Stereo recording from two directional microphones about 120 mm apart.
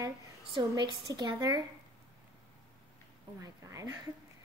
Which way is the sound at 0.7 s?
35° right (ahead or behind).